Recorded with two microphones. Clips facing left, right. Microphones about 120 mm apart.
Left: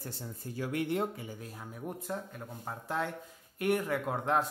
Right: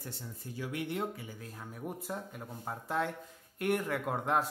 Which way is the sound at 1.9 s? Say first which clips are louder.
Left 2 dB; 5° right (ahead or behind).